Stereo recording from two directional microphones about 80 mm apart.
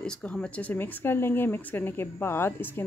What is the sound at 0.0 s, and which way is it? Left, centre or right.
Speech, centre.